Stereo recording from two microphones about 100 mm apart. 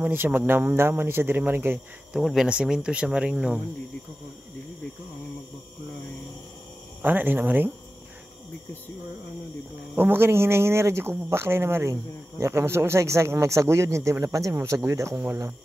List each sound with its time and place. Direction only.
0.0 s speech: 20° right (ahead or behind)
2.1 s speech: 5° right (ahead or behind)
7.0 s speech: 20° right (ahead or behind)
9.9 s speech: 20° right (ahead or behind)